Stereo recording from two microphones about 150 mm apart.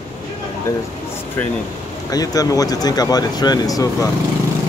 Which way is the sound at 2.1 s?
25° left (ahead or behind).